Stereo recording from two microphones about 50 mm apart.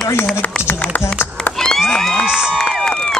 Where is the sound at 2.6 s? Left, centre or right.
Centre.